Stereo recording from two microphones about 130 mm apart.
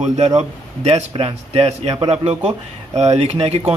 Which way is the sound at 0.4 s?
55° right (ahead or behind).